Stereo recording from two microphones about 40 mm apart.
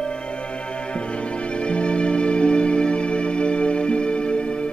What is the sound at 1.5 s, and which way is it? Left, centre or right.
Music, left.